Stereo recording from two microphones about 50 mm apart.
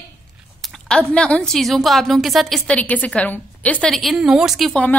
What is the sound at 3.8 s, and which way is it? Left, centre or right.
Speech, centre.